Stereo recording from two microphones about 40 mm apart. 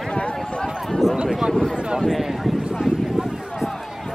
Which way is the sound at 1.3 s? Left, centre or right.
Centre.